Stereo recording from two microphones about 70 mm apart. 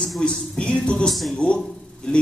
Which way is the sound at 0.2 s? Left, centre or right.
Centre.